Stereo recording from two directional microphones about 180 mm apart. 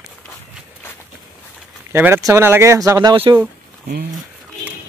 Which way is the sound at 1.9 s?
10° right (ahead or behind).